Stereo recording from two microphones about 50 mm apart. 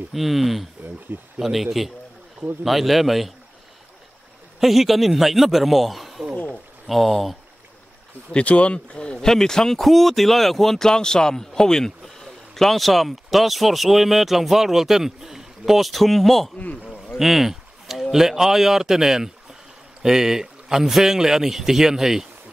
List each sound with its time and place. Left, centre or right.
0.1 s speech: centre
1.1 s speech: right
1.4 s speech: centre
4.6 s speech: centre
8.3 s speech: left; by 16.5 s centre
17.2 s a sound: centre
18.1 s speech: centre